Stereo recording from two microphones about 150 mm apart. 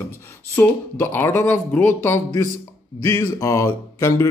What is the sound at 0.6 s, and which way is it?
Speech, 15° left (ahead or behind).